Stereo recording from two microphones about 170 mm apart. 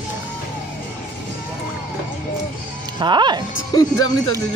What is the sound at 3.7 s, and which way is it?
Speech, 20° left (ahead or behind).